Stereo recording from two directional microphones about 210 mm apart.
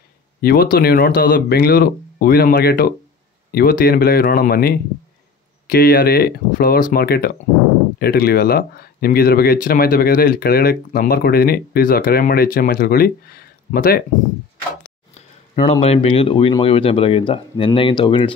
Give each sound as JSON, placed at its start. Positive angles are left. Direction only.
{"t": 0.4, "sound": "speech", "side_deg": 45}
{"t": 15.1, "sound": "speech", "side_deg": 30}